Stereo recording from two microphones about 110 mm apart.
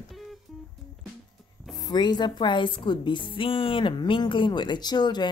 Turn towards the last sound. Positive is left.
turn(degrees=40)  # may be behind; listen again after turning